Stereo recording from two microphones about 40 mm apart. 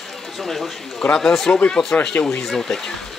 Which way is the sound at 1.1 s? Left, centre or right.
Centre.